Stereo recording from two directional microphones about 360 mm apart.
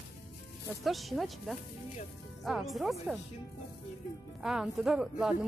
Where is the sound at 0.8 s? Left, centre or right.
Centre.